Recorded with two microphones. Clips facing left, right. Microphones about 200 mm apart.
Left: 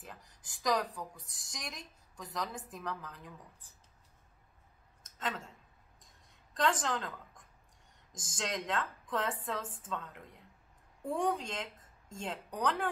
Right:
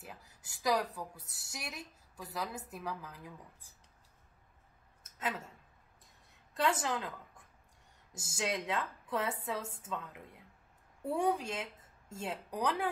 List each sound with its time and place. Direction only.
0.0 s a woman's voice: 10° right (ahead or behind)
5.0 s a sound: 10° right (ahead or behind)
8.1 s a woman's voice: 10° right (ahead or behind)